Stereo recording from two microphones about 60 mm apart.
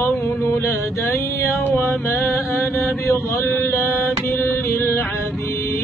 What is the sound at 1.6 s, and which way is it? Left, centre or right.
Mantra, left.